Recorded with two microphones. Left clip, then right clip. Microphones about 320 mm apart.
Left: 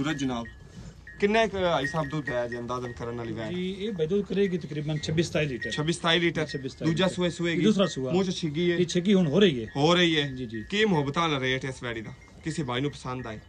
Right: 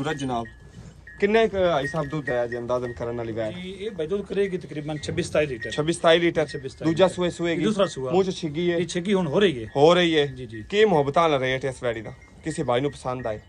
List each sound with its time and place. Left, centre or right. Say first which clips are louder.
0.0 s a man's voice: right 3 dB; centre
3.5 s speech: even; centre
5.7 s a man's voice: right 8 dB; centre
7.6 s a man's voice: right 1 dB; centre
8.1 s a man's voice: right 5 dB; centre
8.8 s a man's voice: right 1 dB; centre
9.8 s a man's voice: right 6 dB; centre
10.3 s a man's voice: left 1 dB; centre
10.7 s a man's voice: right 7 dB; centre